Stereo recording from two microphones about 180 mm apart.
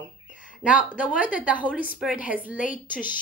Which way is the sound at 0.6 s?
5° right (ahead or behind).